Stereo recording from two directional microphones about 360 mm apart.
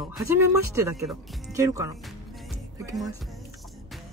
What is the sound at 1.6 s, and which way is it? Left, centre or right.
Speech, centre.